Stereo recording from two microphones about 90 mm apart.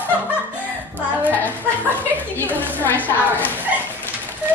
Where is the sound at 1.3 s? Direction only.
20° left (ahead or behind).